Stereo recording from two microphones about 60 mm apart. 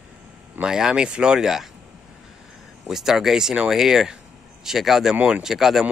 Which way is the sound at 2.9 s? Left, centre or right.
Centre.